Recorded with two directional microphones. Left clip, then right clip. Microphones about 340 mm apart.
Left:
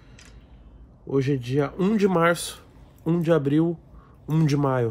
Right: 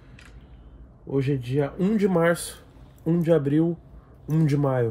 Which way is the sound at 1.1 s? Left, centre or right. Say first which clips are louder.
Left 2 dB; centre.